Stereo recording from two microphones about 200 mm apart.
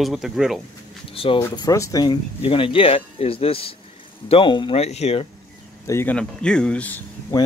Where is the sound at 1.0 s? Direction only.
25° left (ahead or behind).